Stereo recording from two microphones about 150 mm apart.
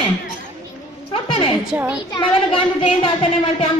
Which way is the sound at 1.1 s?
35° left (ahead or behind).